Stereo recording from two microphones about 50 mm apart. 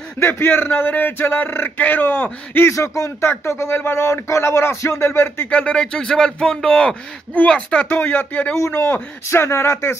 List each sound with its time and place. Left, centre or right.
0.3 s speech: left
2.7 s speech: left
3.7 s speech: left
4.1 s speech: left
5.5 s speech: left
7.9 s speech: left
8.5 s speech: left
9.3 s speech: left